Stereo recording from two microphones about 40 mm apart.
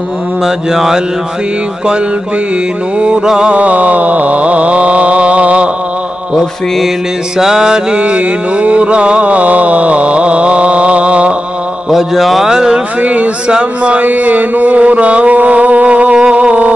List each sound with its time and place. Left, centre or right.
0.4 s mantra: centre
3.3 s speech: right
3.5 s mantra: right
7.3 s mantra: centre
8.0 s a sound: right
11.9 s speech: centre
12.4 s mantra: centre
13.0 s speech: right
14.0 s mantra: right